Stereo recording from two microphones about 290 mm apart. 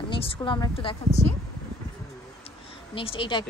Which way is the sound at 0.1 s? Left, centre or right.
Centre.